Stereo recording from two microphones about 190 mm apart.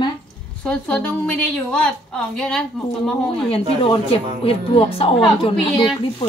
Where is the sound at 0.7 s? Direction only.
5° left (ahead or behind).